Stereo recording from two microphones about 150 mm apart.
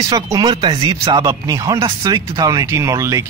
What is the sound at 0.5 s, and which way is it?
Speech, 40° right (ahead or behind).